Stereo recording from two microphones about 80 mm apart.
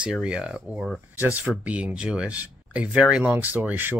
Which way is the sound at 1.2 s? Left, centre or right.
Right.